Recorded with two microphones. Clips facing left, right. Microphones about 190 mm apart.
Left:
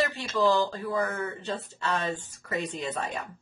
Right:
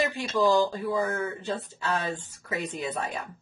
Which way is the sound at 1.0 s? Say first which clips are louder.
Right 2 dB; centre (ahead or behind).